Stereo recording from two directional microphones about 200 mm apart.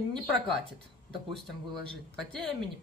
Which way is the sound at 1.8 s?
5° left (ahead or behind).